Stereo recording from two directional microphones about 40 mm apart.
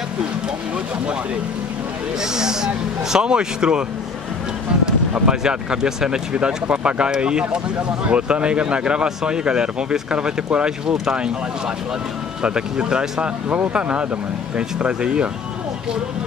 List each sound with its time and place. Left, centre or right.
2.3 s speech: centre
5.1 s speech: centre
12.4 s speech: right